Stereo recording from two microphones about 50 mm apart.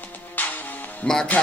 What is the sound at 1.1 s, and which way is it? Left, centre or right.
Speech, centre.